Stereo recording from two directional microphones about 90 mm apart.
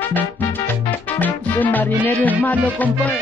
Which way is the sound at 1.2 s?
20° left (ahead or behind).